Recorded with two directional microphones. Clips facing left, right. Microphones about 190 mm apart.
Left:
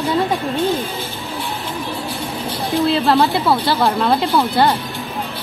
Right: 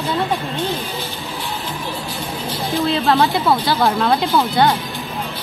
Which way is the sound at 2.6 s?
Centre (ahead or behind).